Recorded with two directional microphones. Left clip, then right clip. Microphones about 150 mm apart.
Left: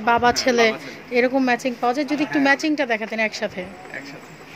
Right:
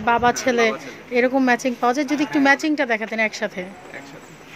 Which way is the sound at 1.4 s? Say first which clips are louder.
Right 2 dB; 25° right (ahead or behind).